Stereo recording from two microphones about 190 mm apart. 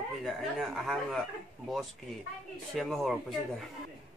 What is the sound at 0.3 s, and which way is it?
Speech, centre (ahead or behind).